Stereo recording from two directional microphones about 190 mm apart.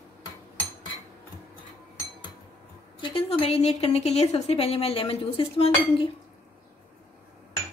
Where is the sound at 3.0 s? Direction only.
30° left (ahead or behind).